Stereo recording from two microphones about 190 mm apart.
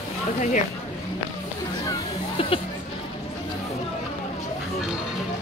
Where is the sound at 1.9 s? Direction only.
25° left (ahead or behind).